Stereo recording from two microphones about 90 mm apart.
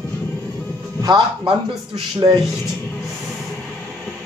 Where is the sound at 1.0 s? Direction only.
50° right (ahead or behind).